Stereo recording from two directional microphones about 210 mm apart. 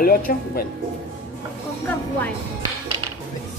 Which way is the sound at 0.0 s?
45° left (ahead or behind).